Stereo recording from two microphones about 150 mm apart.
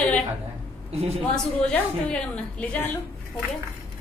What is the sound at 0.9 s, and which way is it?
Speech, 45° right (ahead or behind).